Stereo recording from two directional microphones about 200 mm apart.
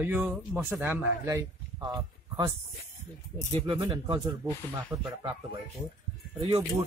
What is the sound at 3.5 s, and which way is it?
Speech, 20° right (ahead or behind).